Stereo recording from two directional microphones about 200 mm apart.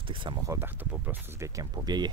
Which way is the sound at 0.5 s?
10° right (ahead or behind).